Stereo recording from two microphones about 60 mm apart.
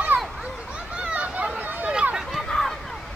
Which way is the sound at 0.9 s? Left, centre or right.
Centre.